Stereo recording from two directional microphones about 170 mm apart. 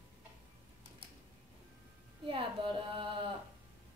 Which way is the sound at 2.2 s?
30° right (ahead or behind).